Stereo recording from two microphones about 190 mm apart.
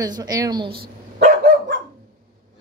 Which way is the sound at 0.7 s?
55° right (ahead or behind).